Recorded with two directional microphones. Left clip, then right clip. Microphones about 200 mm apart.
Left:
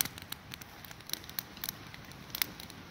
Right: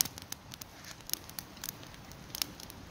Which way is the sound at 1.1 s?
10° left (ahead or behind).